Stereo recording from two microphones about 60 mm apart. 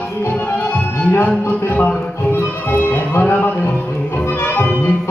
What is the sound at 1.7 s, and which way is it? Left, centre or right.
Music, left.